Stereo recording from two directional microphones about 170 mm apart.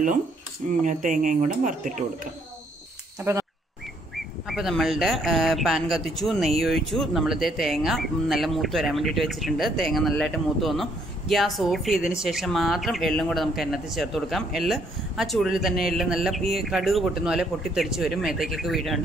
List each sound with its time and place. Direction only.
0.8 s speech: 50° right (ahead or behind)
3.2 s speech: 15° right (ahead or behind)
4.1 s speech: centre (ahead or behind)